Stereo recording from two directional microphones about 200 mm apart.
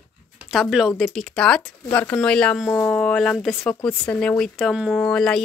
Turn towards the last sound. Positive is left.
turn(degrees=5)  # may be behind; listen again after turning